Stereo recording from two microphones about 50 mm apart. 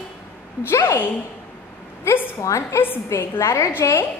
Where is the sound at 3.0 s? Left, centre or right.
Left.